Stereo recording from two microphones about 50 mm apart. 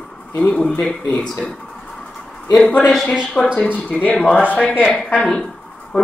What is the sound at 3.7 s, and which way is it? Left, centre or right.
Speech, left.